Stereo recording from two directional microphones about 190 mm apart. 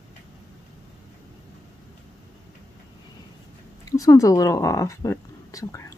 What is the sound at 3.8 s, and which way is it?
Speech, 20° left (ahead or behind).